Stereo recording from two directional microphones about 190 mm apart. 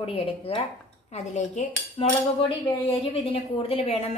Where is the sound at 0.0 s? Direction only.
30° left (ahead or behind).